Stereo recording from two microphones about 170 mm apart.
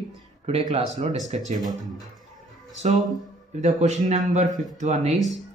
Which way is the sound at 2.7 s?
45° right (ahead or behind).